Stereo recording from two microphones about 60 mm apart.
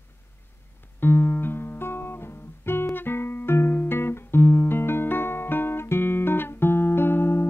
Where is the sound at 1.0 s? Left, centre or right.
Left.